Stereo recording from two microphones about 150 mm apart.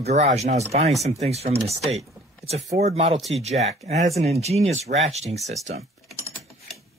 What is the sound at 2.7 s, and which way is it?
Speech, 45° right (ahead or behind).